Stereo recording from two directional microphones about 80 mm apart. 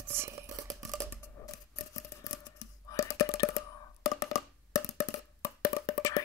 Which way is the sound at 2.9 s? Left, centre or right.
Left.